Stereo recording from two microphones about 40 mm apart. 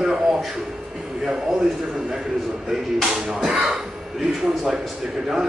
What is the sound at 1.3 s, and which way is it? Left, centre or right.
Speech, centre.